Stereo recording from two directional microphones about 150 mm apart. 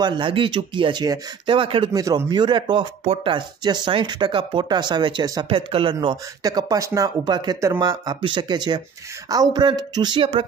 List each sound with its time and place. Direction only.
0.0 s speech: 30° right (ahead or behind)
2.0 s speech: 25° right (ahead or behind)